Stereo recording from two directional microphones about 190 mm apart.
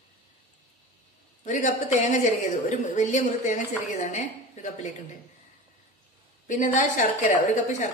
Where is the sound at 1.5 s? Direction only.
40° left (ahead or behind).